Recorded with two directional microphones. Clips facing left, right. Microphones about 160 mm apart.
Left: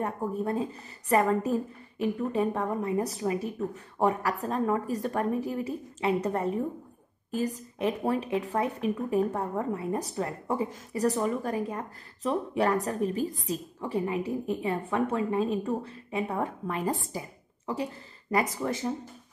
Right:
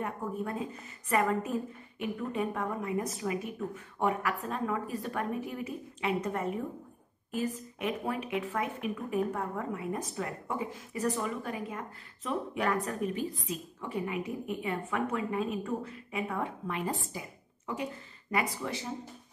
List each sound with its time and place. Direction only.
0.0 s speech: 35° left (ahead or behind)